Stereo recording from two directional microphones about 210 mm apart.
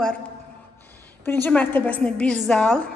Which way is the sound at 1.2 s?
10° left (ahead or behind).